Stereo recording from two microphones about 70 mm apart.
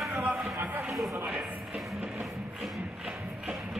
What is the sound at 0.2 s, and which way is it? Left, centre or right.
Music, right.